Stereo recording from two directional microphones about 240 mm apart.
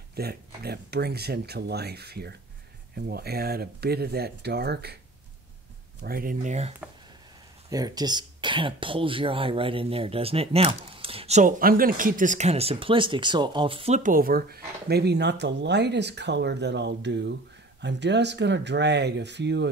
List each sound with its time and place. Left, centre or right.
0.1 s speech: right
6.0 s speech: right
7.7 s speech: centre; by 19.7 s right